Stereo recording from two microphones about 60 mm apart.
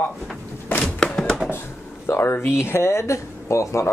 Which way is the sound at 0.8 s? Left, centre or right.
Centre.